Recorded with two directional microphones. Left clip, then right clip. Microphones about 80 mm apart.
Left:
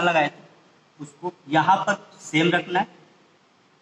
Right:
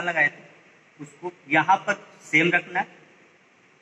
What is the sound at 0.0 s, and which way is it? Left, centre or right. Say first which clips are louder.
A man's voice: left 2 dB; left.